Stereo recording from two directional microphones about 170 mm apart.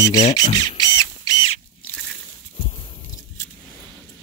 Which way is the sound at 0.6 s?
20° left (ahead or behind).